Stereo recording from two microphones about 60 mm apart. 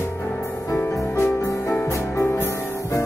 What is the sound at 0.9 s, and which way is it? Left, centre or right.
Music, left.